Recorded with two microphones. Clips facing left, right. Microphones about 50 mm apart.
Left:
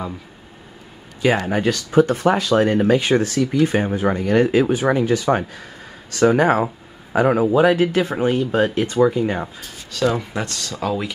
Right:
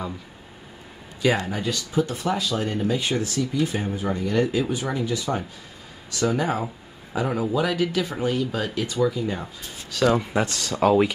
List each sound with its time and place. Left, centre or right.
1.5 s speech: left
9.9 s speech: centre
10.7 s speech: right